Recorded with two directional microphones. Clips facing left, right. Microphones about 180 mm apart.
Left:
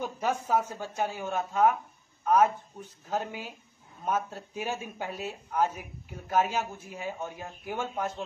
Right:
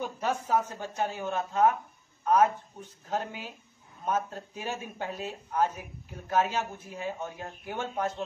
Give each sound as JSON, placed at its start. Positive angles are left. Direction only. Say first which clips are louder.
{"t": 0.2, "sound": "speech", "louder": "even", "side_deg": 10}